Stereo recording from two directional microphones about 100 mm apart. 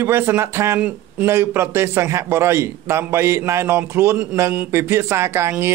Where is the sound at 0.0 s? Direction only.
20° right (ahead or behind).